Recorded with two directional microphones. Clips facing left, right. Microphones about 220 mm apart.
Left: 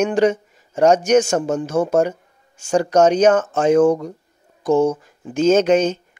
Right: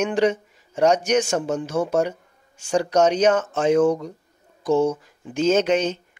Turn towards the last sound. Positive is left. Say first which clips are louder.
# left 5 dB
turn(degrees=45)  # may be behind; listen again after turning